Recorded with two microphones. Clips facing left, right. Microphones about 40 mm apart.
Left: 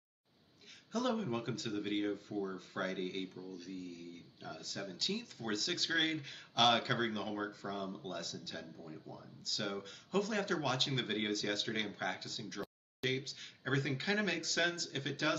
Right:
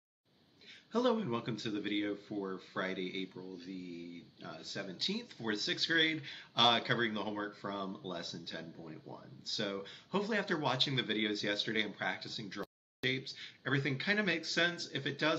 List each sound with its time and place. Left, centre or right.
0.9 s speech: centre